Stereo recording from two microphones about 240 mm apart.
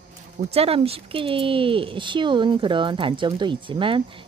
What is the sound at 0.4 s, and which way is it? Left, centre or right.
Speech, right.